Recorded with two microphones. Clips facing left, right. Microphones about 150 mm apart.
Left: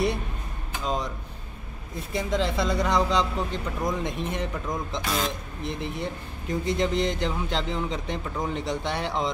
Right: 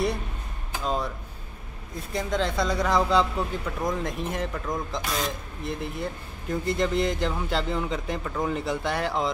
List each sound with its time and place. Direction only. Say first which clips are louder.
0.8 s speech: right 1 dB; 5° right (ahead or behind)
2.1 s speech: even; centre (ahead or behind)